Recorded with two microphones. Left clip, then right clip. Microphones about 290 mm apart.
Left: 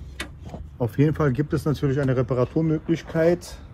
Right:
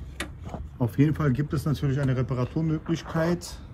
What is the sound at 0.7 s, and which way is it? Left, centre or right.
Speech, centre.